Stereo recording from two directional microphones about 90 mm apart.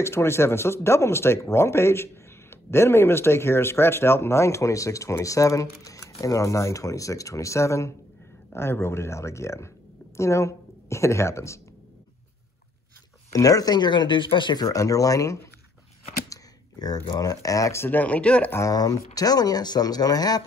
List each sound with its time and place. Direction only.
0.0 s speech: 30° left (ahead or behind)
13.3 s speech: 40° left (ahead or behind)
16.3 s a sound: 50° left (ahead or behind)
17.2 s speech: 40° left (ahead or behind)
17.8 s speech: 15° left (ahead or behind)
18.5 s speech: 40° left (ahead or behind)